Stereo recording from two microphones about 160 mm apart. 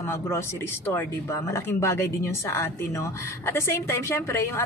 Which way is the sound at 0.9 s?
15° left (ahead or behind).